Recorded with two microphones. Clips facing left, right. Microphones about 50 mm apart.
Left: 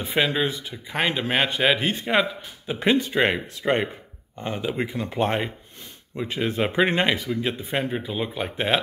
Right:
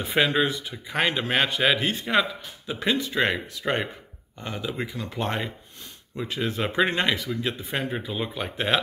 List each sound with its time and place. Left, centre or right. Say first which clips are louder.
0.0 s speech: right 1 dB; centre; by 7.2 s left
7.2 s speech: left 3 dB; centre